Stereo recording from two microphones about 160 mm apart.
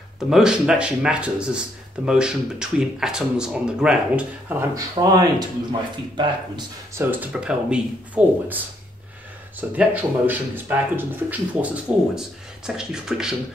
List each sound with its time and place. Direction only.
0.3 s speech: 5° right (ahead or behind)
4.7 s speech: 25° right (ahead or behind)
6.9 s speech: 15° right (ahead or behind)